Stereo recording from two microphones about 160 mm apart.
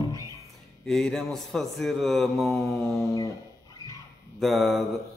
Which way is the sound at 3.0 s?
20° left (ahead or behind).